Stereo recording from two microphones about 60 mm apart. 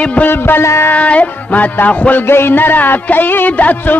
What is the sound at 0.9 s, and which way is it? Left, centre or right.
Music, left.